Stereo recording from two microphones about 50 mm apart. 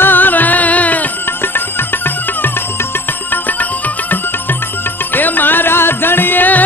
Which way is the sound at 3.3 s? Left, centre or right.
Left.